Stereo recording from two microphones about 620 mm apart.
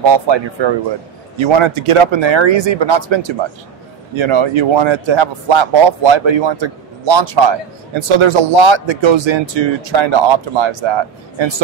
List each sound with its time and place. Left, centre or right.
0.1 s a man's voice: right